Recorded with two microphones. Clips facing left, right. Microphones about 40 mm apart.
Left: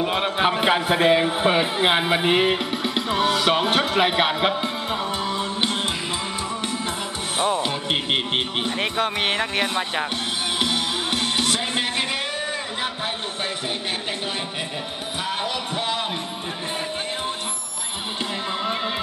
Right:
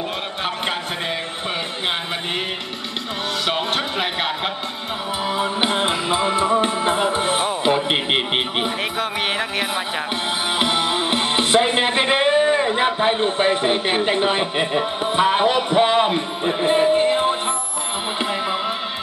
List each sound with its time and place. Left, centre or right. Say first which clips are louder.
0.4 s speech: left 5 dB; centre
3.2 s music: left 3 dB; centre
5.4 s music: right 4 dB; centre
7.6 s a sound: right 6 dB; right
8.9 s music: even; centre
10.6 s music: right 5 dB; right
15.1 s speech: right 10 dB; right
16.6 s music: right 14 dB; right